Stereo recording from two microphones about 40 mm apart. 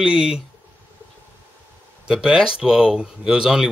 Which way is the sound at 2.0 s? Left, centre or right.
Centre.